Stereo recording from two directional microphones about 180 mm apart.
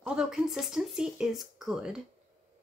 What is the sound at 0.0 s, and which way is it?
Speech, 5° right (ahead or behind).